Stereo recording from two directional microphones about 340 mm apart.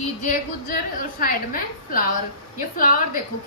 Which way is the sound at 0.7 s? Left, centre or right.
Left.